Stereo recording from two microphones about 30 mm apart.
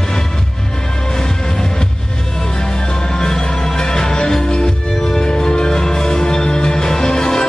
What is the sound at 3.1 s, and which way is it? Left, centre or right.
Music, left.